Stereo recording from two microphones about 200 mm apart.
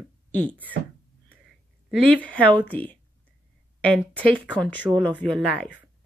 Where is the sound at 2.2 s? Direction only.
5° left (ahead or behind).